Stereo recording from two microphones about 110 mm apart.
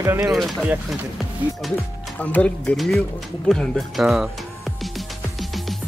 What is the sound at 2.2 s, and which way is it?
Speech, 15° left (ahead or behind).